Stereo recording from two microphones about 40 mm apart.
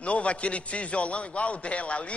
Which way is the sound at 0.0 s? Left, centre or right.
Left.